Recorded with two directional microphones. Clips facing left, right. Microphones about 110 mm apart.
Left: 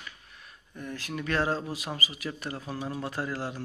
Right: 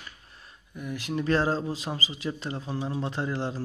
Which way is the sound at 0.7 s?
15° right (ahead or behind).